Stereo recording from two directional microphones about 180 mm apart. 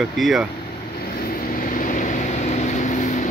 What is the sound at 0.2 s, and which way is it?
Speech, centre (ahead or behind).